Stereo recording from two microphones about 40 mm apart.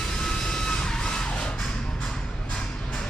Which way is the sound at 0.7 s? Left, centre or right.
Centre.